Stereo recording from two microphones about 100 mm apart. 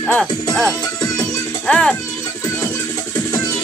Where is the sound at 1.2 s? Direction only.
10° left (ahead or behind).